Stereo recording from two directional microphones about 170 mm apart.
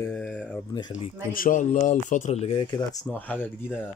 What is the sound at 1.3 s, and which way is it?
Speech, 55° left (ahead or behind).